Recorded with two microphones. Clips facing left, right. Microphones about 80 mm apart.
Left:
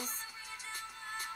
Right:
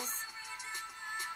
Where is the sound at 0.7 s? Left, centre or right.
Right.